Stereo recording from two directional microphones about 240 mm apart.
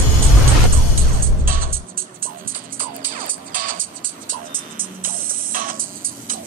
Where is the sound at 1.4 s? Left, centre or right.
Right.